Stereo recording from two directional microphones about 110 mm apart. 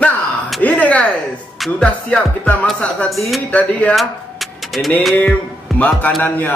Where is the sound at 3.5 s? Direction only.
10° left (ahead or behind).